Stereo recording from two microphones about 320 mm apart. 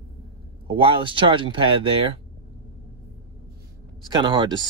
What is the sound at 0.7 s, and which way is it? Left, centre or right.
Speech, centre.